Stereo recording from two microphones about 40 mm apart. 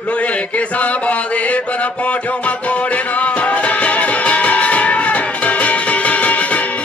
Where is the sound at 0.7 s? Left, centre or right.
Left.